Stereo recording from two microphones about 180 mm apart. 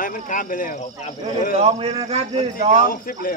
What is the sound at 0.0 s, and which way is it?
Speech, 50° left (ahead or behind).